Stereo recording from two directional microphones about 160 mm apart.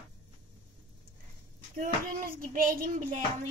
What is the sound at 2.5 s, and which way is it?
Speech, 60° right (ahead or behind).